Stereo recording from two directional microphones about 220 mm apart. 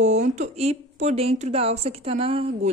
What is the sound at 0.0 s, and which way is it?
Speech, 30° right (ahead or behind).